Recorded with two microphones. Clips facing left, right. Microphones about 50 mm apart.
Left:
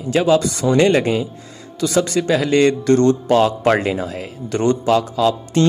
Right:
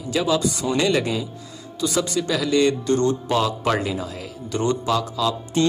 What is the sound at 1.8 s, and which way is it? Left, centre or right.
A man's voice, left.